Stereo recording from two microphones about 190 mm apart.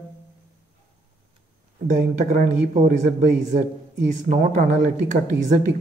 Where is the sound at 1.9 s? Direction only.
40° right (ahead or behind).